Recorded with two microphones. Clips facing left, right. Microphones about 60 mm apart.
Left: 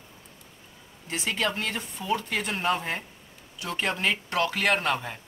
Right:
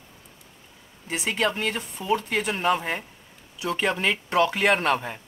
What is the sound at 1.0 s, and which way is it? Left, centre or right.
Speech, centre.